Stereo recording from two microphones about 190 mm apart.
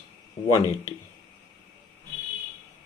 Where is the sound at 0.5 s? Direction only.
15° left (ahead or behind).